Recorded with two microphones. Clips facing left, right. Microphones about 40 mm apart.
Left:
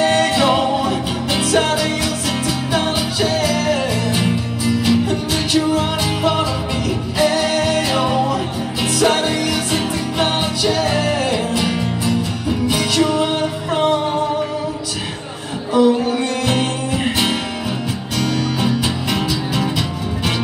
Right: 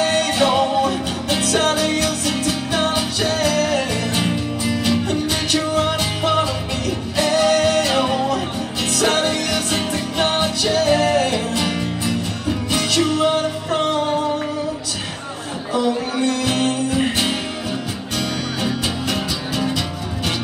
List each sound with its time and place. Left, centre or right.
0.0 s music: centre
15.7 s music: centre
18.1 s music: centre
18.6 s music: centre